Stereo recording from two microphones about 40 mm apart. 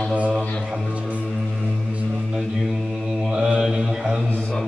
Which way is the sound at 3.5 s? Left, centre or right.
Right.